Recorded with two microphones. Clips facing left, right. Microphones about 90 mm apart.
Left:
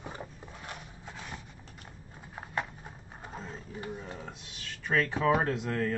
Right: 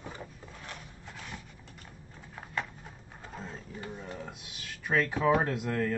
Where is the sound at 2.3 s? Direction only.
20° left (ahead or behind).